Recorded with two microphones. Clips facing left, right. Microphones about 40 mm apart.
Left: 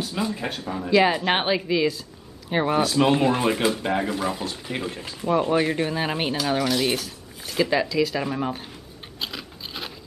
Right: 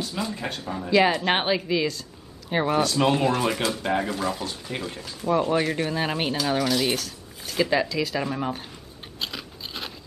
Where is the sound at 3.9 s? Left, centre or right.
Centre.